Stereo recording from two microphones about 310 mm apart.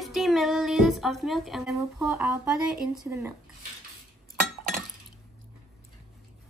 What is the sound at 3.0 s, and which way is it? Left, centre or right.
Speech, centre.